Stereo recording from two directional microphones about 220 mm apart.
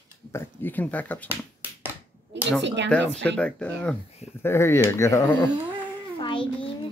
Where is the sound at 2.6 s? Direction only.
55° right (ahead or behind).